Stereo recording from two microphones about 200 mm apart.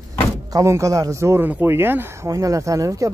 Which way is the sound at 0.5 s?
15° right (ahead or behind).